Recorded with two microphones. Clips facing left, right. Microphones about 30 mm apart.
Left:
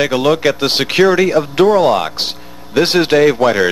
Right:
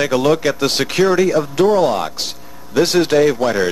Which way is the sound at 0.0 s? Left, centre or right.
Centre.